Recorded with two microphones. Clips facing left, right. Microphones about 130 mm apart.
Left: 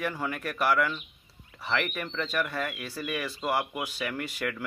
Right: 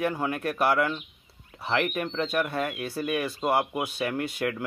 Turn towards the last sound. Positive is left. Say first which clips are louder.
# right 4 dB
turn(degrees=-25)  # may be behind; listen again after turning